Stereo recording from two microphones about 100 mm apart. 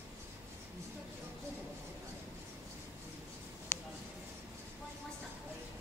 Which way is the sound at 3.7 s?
25° left (ahead or behind).